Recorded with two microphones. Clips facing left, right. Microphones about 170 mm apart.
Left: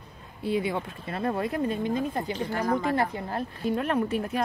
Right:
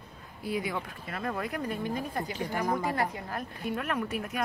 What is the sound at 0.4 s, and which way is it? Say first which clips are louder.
A woman's voice: left 5 dB; 25° left (ahead or behind).